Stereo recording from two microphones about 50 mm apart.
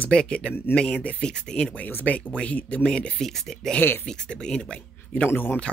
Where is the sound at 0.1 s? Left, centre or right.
Left.